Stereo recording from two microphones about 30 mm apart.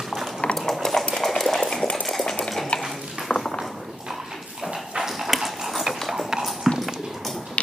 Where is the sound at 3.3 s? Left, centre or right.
Left.